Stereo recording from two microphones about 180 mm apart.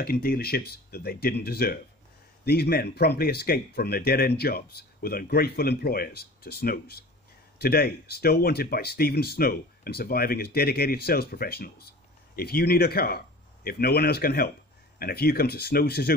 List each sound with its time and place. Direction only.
0.0 s speech: 55° left (ahead or behind)